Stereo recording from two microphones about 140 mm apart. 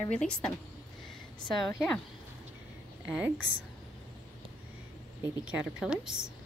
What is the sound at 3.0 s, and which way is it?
Speech, 5° right (ahead or behind).